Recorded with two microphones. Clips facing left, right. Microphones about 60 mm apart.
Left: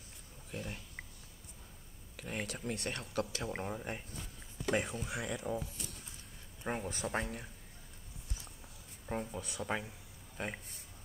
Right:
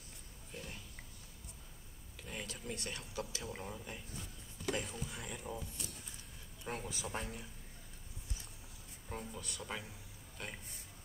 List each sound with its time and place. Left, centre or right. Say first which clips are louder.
0.5 s a sound: left 5 dB; left
2.1 s speech: left 5 dB; left
6.6 s speech: left 5 dB; left
9.1 s a man's voice: left 6 dB; left